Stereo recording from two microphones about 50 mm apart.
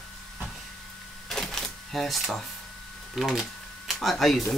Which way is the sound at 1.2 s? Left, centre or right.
Centre.